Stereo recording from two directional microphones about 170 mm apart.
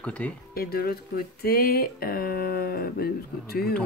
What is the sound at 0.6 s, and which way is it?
Speech, 60° left (ahead or behind).